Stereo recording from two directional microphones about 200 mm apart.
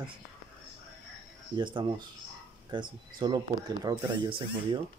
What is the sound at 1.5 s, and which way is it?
Speech, 25° right (ahead or behind).